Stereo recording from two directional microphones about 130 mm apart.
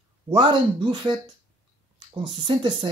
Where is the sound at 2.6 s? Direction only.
40° right (ahead or behind).